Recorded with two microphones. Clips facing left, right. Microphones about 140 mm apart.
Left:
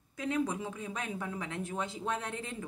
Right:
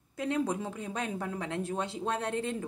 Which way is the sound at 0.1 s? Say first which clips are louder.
Right 2 dB; 30° right (ahead or behind).